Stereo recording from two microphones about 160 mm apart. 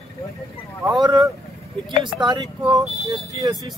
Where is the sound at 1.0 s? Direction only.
25° right (ahead or behind).